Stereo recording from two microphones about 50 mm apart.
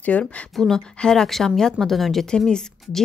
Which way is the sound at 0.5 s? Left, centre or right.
Centre.